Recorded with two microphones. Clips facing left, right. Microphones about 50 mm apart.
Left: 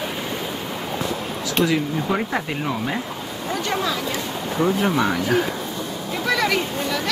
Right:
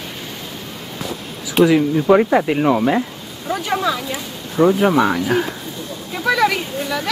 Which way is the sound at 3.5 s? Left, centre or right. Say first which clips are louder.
Right 4 dB; centre.